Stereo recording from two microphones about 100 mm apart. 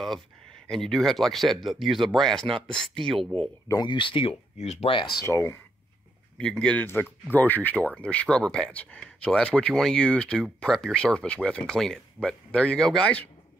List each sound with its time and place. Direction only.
0.7 s speech: 5° left (ahead or behind)
3.8 s speech: 55° left (ahead or behind); by 4.9 s 90° left
5.2 s speech: 25° left (ahead or behind)
6.3 s speech: 10° left (ahead or behind)